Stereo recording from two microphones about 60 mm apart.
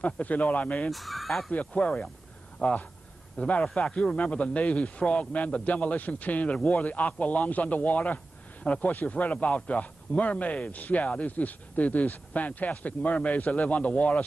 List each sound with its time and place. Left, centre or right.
0.0 s speech: left
0.8 s speech: centre
1.5 s speech: left